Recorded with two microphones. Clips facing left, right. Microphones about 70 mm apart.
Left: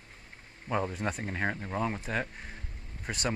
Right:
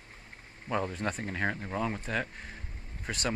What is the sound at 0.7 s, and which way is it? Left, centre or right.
Speech, centre.